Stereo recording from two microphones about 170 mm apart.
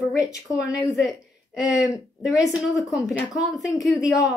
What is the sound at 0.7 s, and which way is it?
Speech, 5° right (ahead or behind).